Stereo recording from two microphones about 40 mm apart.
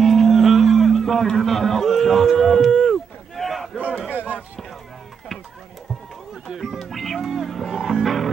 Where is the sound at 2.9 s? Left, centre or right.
Centre.